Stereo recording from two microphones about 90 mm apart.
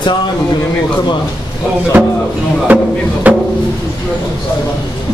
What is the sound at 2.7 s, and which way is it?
Music, 20° right (ahead or behind).